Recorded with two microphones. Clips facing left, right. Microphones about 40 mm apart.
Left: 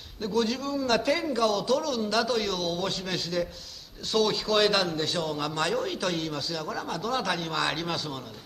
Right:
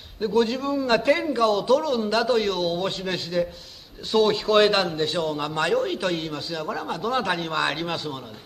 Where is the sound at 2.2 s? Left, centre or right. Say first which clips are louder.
Right 5 dB; centre.